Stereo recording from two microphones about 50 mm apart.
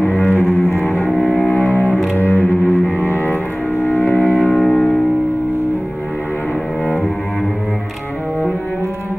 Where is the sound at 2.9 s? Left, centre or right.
Left.